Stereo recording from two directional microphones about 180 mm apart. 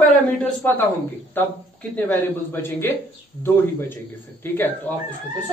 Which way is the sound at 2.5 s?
10° left (ahead or behind).